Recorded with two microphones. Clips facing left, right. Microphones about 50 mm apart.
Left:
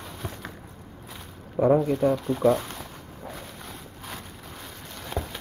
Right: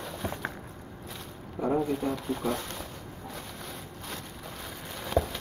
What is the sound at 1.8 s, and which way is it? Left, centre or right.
Speech, centre.